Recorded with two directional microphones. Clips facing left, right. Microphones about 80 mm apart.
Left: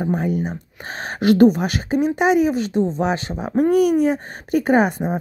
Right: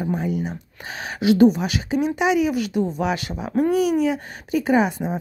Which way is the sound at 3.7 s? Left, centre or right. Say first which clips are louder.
Left 4 dB; left.